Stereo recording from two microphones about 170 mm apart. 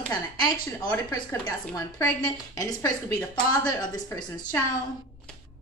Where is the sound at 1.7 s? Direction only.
20° left (ahead or behind).